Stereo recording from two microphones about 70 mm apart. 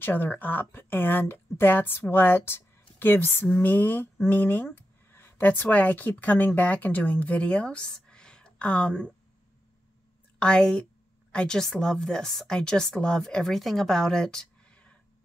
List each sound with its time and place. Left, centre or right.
0.0 s speech: left
10.4 s a woman's voice: centre